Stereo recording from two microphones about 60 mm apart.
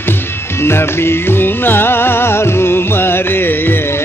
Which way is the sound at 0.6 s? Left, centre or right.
Left.